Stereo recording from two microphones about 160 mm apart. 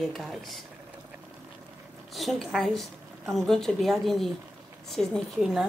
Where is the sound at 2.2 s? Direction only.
Centre (ahead or behind).